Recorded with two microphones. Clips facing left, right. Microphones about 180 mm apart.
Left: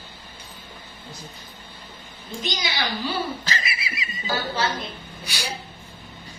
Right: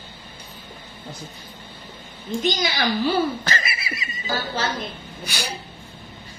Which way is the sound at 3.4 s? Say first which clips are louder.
Right 2 dB; 50° right (ahead or behind).